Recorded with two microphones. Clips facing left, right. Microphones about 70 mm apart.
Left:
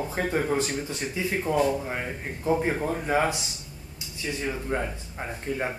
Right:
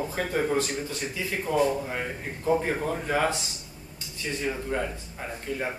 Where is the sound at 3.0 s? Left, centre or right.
Centre.